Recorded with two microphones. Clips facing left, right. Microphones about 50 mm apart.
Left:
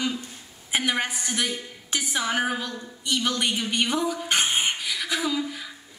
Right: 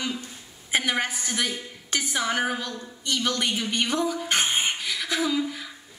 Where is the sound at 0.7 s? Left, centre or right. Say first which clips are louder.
Even; centre.